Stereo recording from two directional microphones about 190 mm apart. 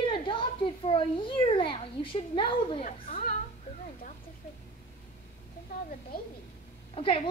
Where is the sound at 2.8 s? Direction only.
45° left (ahead or behind).